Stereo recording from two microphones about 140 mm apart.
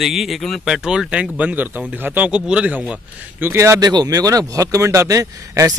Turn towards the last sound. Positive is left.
turn(degrees=-25)  # may be behind; listen again after turning